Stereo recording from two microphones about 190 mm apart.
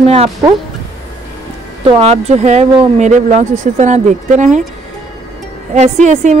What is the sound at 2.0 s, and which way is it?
Speech, 35° right (ahead or behind).